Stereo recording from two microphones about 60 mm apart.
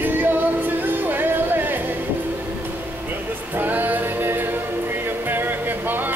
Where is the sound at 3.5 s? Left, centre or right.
Right.